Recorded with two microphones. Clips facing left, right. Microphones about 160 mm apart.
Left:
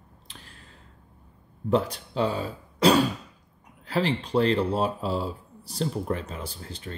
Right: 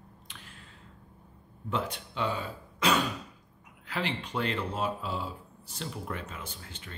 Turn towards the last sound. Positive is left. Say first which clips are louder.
# left 7 dB
turn(degrees=35)  # may be behind; listen again after turning